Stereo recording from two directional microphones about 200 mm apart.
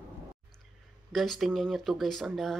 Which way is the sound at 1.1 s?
Centre (ahead or behind).